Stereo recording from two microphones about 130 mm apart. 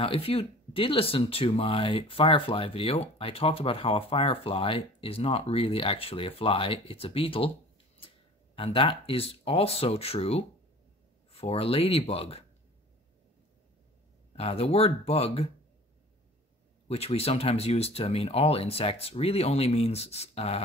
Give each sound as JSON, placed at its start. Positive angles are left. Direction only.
{"t": 0.0, "sound": "speech", "side_deg": 45}
{"t": 8.5, "sound": "speech", "side_deg": 45}
{"t": 14.3, "sound": "speech", "side_deg": 50}
{"t": 16.8, "sound": "speech", "side_deg": 50}